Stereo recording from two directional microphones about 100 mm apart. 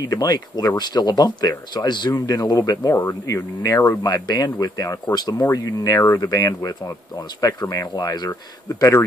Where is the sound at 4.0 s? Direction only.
40° left (ahead or behind).